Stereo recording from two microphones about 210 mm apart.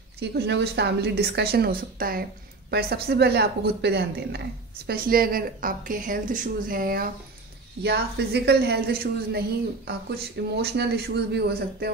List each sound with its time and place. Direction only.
0.2 s a woman's voice: 55° right (ahead or behind)